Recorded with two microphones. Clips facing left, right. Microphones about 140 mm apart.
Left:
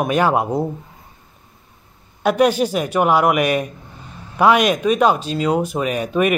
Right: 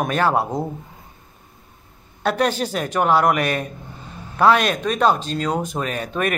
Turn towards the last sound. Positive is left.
turn(degrees=10)  # may be behind; listen again after turning